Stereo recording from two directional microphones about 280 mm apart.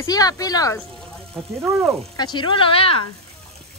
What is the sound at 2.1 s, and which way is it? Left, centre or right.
Speech, centre.